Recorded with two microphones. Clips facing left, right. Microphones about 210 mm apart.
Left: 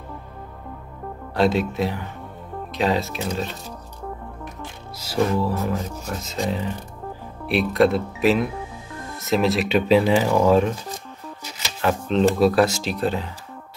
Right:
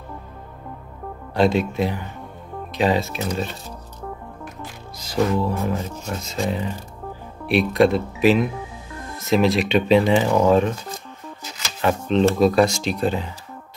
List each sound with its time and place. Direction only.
1.3 s speech: centre (ahead or behind)
4.9 s speech: 5° left (ahead or behind)
7.4 s speech: centre (ahead or behind)
11.8 s speech: centre (ahead or behind)